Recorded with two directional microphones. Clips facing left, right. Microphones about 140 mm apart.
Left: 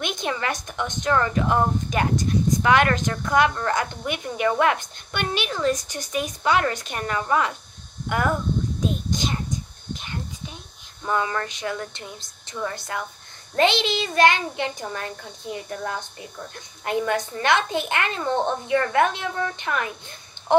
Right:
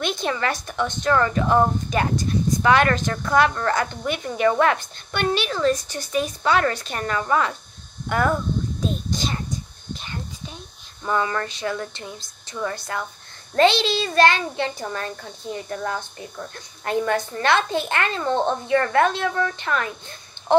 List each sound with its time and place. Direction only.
0.0 s a woman's voice: 15° left (ahead or behind)
8.8 s a child's voice: 15° left (ahead or behind)
11.1 s a woman's voice: 15° left (ahead or behind)
16.8 s speech: 15° left (ahead or behind)